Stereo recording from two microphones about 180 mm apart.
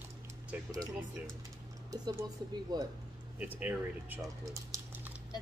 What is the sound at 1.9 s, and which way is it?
Speech, 20° right (ahead or behind).